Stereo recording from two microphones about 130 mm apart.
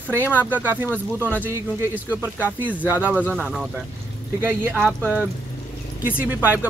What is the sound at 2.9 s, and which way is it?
Speech, 15° right (ahead or behind).